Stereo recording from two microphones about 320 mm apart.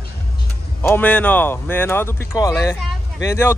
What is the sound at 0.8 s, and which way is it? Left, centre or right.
Speech, centre.